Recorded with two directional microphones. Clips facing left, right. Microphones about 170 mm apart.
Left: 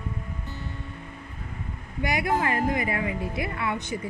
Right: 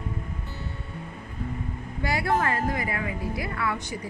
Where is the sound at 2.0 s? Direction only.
20° left (ahead or behind).